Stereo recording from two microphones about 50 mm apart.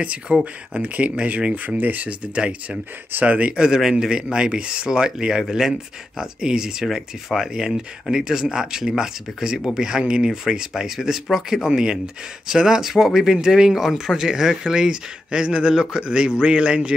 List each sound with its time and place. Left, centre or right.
0.0 s speech: right
2.3 s speech: right
3.1 s speech: right
3.5 s speech: centre